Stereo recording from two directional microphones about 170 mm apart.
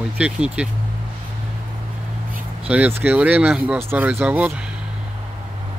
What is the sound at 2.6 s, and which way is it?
Speech, 10° right (ahead or behind).